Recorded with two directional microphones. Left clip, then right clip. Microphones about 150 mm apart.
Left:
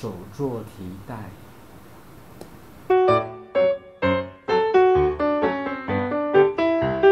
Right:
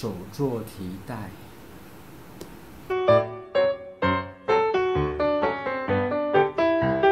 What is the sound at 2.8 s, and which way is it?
Music, centre (ahead or behind).